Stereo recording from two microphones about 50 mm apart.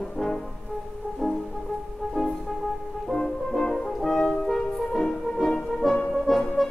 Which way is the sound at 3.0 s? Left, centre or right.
Centre.